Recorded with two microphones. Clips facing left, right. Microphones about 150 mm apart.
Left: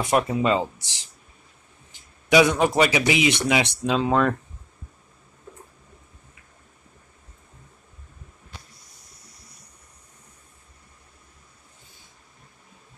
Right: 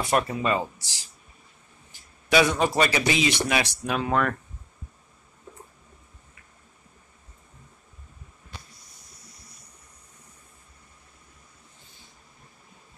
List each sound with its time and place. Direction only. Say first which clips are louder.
0.0 s speech: left 3 dB; 20° left (ahead or behind)
1.9 s a sound: left 4 dB; 20° left (ahead or behind)
3.1 s speech: left 3 dB; 15° left (ahead or behind)